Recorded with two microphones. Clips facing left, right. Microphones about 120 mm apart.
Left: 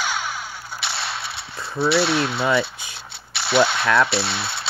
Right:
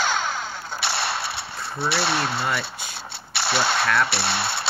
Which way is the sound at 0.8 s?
60° right (ahead or behind).